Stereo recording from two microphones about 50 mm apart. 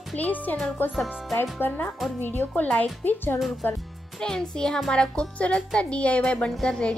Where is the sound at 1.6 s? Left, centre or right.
Left.